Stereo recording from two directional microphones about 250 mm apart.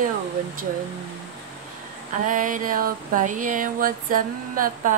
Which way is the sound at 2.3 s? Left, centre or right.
Right.